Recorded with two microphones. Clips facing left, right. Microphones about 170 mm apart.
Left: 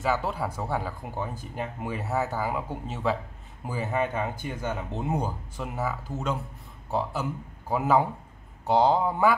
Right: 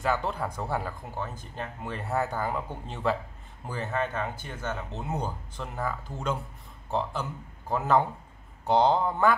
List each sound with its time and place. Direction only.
0.0 s speech: 5° left (ahead or behind)
1.0 s speech: 15° left (ahead or behind)